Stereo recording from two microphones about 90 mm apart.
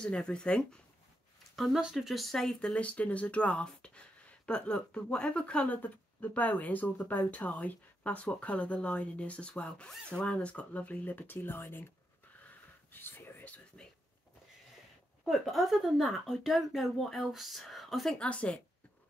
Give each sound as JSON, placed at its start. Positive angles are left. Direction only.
{"t": 0.0, "sound": "speech", "side_deg": 10}
{"t": 1.6, "sound": "speech", "side_deg": -5}
{"t": 12.4, "sound": "a sound", "side_deg": 20}
{"t": 15.2, "sound": "a woman's voice", "side_deg": 0}
{"t": 18.1, "sound": "speech", "side_deg": 15}